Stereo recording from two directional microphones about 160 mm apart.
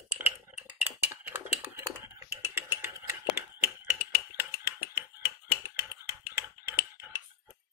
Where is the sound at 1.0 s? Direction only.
15° right (ahead or behind).